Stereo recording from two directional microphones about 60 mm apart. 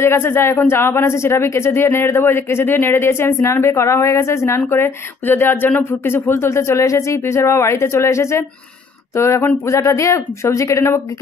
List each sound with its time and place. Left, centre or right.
0.0 s speech: left
9.8 s speech: left